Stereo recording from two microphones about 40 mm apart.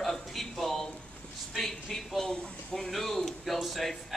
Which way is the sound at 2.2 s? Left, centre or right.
Left.